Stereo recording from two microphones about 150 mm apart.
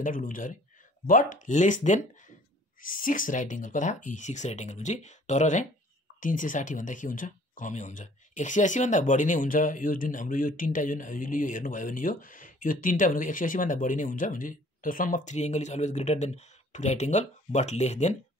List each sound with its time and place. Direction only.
0.0 s speech: 60° left (ahead or behind)